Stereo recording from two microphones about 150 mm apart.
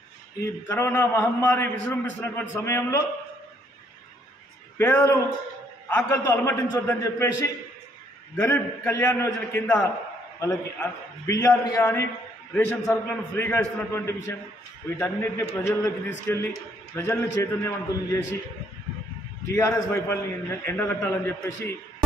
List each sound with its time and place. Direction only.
0.4 s a man's voice: 15° left (ahead or behind)
4.7 s a man's voice: 15° left (ahead or behind)
19.4 s a man's voice: 15° left (ahead or behind)